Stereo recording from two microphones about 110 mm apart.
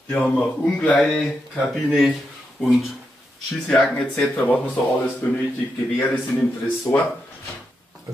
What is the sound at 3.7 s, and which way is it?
Speech, 10° left (ahead or behind).